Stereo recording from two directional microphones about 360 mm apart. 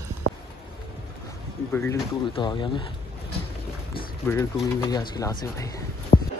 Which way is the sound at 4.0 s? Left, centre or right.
Centre.